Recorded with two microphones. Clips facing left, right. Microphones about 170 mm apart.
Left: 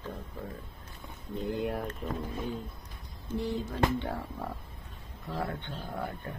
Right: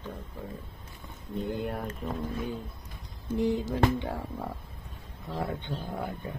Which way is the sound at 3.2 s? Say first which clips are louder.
Right 5 dB; 15° right (ahead or behind).